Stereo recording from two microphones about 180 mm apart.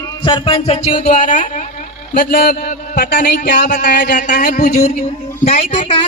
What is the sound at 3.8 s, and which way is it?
Speech, 70° left (ahead or behind).